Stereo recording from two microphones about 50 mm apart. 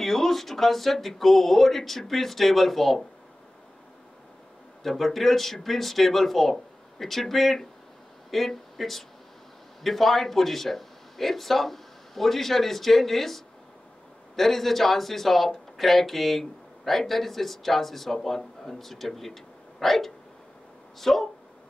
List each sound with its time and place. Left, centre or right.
0.0 s speech: centre
4.8 s speech: centre